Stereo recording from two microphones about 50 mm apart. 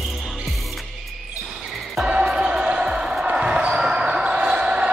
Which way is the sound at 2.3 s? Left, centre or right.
Centre.